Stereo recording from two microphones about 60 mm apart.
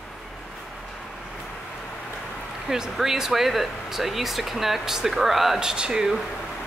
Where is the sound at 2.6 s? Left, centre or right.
Centre.